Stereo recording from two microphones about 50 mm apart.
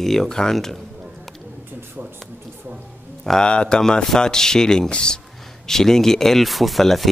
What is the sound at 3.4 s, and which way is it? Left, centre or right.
Speech, centre.